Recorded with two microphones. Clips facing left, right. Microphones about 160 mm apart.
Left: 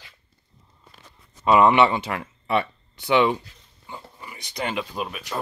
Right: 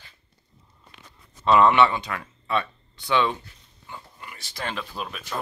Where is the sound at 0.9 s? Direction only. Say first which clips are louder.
Right 2 dB; 10° left (ahead or behind).